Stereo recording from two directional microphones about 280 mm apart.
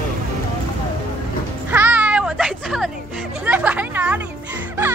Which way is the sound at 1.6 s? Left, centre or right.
Centre.